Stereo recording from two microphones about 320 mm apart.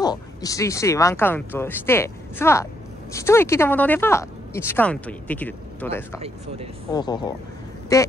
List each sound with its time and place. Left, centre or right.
0.0 s speech: centre
6.2 s speech: centre
6.9 s speech: centre